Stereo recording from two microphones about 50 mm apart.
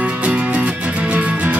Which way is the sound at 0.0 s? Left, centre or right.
Right.